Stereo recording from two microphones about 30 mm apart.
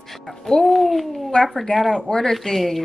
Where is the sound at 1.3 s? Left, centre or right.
Left.